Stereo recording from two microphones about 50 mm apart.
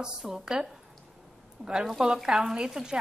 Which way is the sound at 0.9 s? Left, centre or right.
Centre.